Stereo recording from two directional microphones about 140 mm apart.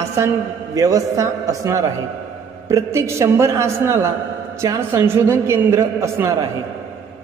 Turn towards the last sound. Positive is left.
turn(degrees=-20)  # may be behind; listen again after turning